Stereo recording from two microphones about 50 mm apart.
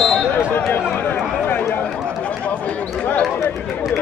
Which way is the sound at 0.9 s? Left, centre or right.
Left.